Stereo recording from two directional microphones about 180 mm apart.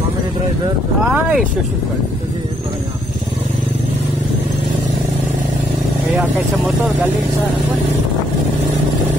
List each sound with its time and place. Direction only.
1.0 s speech: 5° right (ahead or behind)